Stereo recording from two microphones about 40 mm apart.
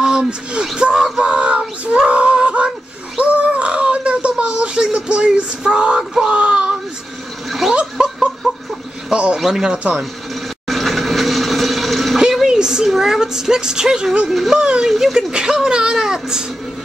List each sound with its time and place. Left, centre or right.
0.0 s speech: right
1.0 s a sound: centre
1.9 s child singing: right
2.3 s a sound: right
7.6 s a sound: centre
8.4 s chicken: centre
9.1 s speech: right
9.5 s speech: centre
10.7 s vehicle: centre
12.2 s a sound: centre
14.3 s speech: centre
15.1 s speech: centre